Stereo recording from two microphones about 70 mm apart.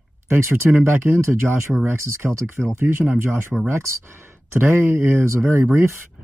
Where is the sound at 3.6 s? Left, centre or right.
Right.